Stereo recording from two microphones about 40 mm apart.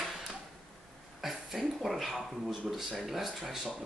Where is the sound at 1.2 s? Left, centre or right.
Centre.